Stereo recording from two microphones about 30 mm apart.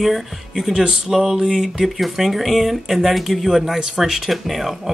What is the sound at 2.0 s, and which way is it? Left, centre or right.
Speech, centre.